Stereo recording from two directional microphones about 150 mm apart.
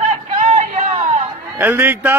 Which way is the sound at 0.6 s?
55° right (ahead or behind).